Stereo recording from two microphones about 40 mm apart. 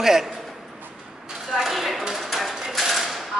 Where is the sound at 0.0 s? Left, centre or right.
Centre.